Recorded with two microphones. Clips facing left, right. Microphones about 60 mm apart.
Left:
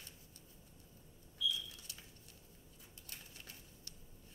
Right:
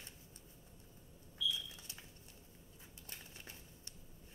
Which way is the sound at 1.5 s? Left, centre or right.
Right.